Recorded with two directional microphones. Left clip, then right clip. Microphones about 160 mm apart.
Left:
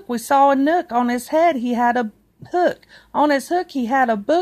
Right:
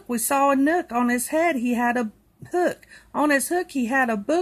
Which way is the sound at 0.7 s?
10° left (ahead or behind).